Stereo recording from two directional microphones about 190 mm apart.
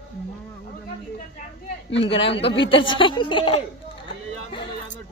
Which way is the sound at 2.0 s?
30° left (ahead or behind).